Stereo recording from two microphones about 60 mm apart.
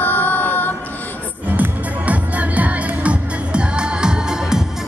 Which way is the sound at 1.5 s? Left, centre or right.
Right.